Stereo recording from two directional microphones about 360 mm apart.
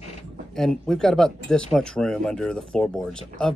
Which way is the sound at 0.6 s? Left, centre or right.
Centre.